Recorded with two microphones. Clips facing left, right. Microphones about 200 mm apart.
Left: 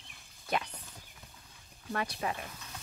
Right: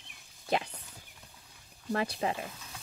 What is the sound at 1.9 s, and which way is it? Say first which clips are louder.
Speech: right 4 dB; 30° right (ahead or behind).